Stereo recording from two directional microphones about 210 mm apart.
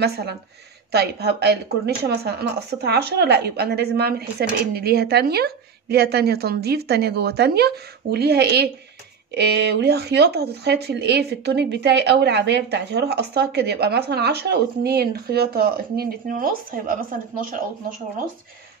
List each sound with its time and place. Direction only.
0.0 s speech: 50° right (ahead or behind)